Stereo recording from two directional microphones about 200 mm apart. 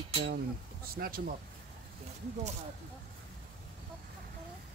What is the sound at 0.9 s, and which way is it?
Speech, 50° right (ahead or behind).